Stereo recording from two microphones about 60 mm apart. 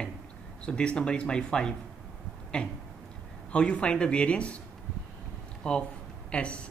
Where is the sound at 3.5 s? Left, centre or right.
Centre.